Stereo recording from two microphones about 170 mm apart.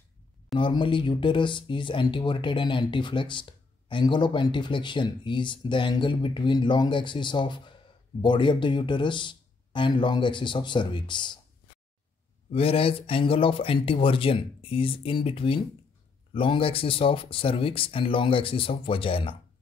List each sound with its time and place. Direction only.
0.6 s speech: 30° left (ahead or behind)
12.4 s speech: 35° left (ahead or behind)